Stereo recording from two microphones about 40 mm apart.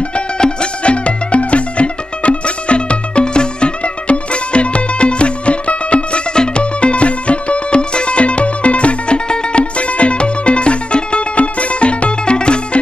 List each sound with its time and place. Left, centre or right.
0.1 s music: left